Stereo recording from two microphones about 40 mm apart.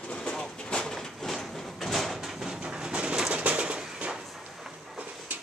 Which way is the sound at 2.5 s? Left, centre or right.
Right.